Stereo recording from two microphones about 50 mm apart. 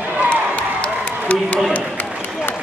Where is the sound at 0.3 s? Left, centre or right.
Left.